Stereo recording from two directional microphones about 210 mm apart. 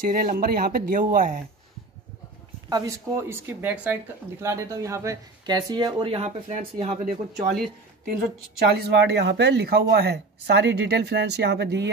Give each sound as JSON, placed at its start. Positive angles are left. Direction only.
{"t": 0.0, "sound": "speech", "side_deg": -40}
{"t": 2.7, "sound": "speech", "side_deg": -15}
{"t": 8.5, "sound": "speech", "side_deg": -50}